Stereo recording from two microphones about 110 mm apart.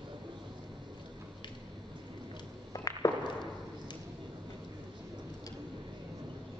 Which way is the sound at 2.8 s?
35° left (ahead or behind).